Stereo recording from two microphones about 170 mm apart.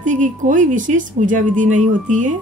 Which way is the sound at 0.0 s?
50° right (ahead or behind).